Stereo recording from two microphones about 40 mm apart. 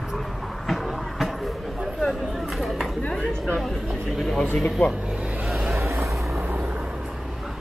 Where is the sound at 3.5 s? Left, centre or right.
Centre.